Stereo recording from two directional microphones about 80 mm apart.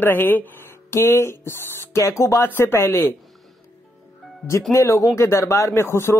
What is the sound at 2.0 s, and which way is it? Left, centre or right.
Speech, left.